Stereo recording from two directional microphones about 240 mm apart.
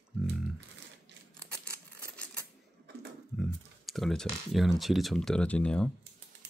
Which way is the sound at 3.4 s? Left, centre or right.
Centre.